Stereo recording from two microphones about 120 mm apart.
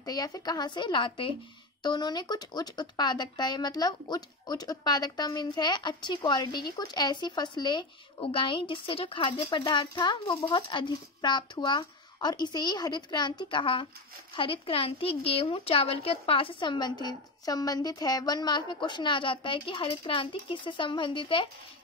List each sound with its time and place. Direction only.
0.0 s a woman's voice: 30° left (ahead or behind)